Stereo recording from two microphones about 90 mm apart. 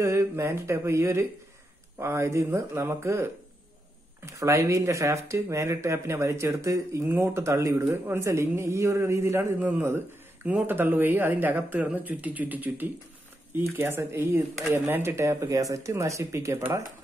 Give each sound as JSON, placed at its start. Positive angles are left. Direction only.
{"t": 0.0, "sound": "speech", "side_deg": -30}